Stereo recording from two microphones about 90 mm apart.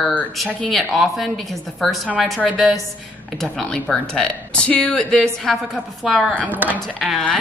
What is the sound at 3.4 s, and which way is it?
Speech, 5° left (ahead or behind).